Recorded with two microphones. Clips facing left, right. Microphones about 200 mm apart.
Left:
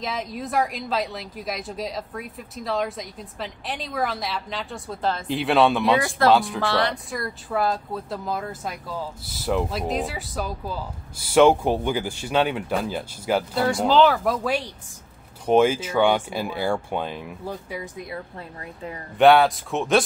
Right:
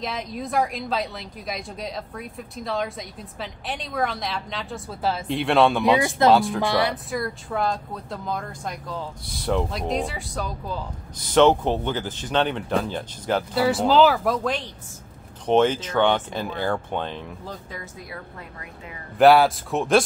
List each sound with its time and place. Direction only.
0.0 s speech: centre (ahead or behind)
5.9 s speech: 20° right (ahead or behind)
6.3 s speech: centre (ahead or behind)
6.6 s speech: 10° right (ahead or behind); by 13.4 s 10° left (ahead or behind)
13.6 s speech: 5° right (ahead or behind)
19.1 s speech: centre (ahead or behind)